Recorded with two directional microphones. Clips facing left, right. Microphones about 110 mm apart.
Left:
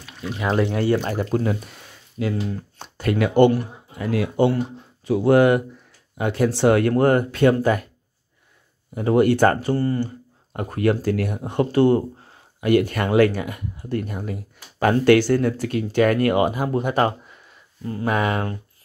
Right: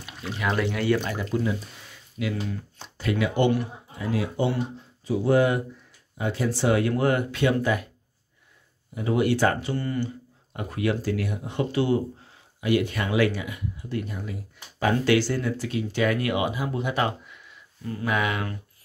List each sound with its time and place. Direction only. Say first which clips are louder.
0.2 s speech: left 5 dB; 30° left (ahead or behind)
1.1 s speech: left 4 dB; 50° left (ahead or behind)
2.2 s speech: left 4 dB; 25° left (ahead or behind)
2.8 s speech: left 4 dB; 55° left (ahead or behind)
8.9 s speech: left 6 dB; 50° left (ahead or behind)